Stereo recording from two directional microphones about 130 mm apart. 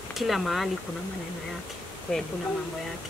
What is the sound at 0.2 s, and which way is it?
Speech, centre (ahead or behind).